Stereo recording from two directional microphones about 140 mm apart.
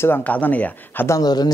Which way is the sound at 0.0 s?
15° left (ahead or behind).